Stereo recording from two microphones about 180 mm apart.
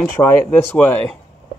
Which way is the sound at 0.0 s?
10° left (ahead or behind).